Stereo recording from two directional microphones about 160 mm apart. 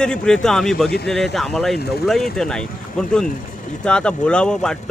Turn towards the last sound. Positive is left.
turn(degrees=5)  # may be behind; listen again after turning